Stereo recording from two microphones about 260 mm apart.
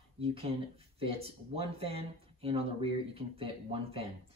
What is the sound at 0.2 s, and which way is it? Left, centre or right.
Speech, right.